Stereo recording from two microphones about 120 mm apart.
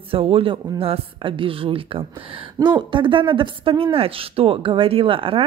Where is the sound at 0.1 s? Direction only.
50° right (ahead or behind).